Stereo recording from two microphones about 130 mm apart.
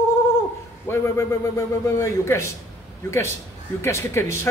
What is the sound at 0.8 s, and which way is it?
A man's voice, 25° left (ahead or behind).